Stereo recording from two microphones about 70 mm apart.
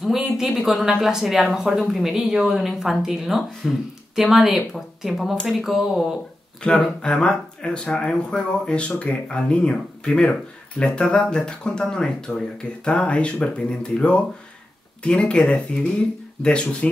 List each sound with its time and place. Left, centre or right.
0.0 s speech: centre
6.6 s speech: centre